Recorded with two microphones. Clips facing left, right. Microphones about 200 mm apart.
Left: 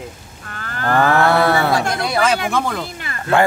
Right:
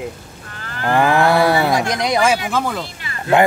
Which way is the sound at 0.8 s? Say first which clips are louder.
Even; 15° right (ahead or behind).